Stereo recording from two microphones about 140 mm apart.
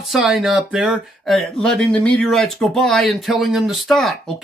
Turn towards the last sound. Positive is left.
turn(degrees=0)  # may be behind; listen again after turning